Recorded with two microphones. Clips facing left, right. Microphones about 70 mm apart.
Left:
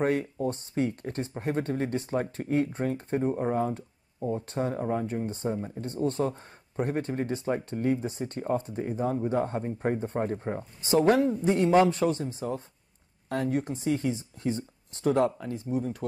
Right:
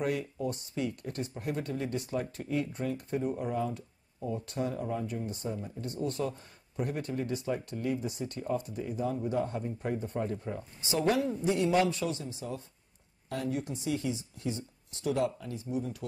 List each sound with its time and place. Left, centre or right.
0.0 s speech: left